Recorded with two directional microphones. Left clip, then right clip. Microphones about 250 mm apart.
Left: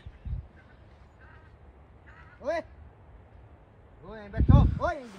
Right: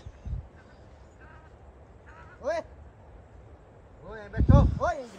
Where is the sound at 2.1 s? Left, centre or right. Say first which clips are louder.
Right 1 dB; right.